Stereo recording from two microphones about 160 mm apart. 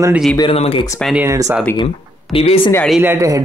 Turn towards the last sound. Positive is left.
turn(degrees=-20)  # may be behind; listen again after turning